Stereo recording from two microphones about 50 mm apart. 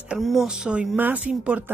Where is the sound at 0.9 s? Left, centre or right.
Right.